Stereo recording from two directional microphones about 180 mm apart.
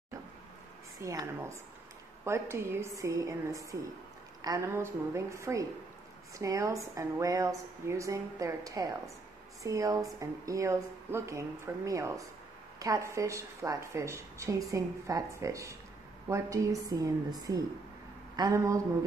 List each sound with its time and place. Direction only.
0.9 s a woman's voice: 15° right (ahead or behind)